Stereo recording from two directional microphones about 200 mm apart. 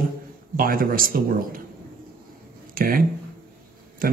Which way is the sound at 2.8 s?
45° right (ahead or behind).